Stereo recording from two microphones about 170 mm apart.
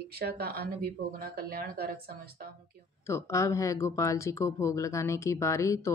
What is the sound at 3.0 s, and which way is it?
Speech, 15° left (ahead or behind).